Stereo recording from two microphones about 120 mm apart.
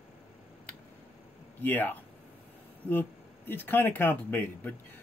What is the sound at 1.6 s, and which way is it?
Speech, 15° left (ahead or behind).